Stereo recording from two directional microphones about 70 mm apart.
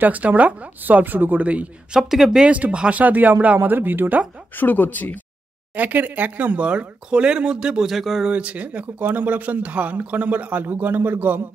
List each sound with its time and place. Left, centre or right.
0.0 s speech: right
2.0 s speech: centre
2.4 s speech: centre
4.6 s speech: left
5.8 s speech: right; by 8.3 s centre
8.3 s speech: centre